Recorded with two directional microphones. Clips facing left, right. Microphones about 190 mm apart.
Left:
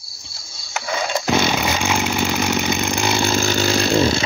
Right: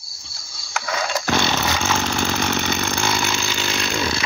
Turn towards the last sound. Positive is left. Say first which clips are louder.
# left 8 dB
turn(degrees=25)  # may be behind; listen again after turning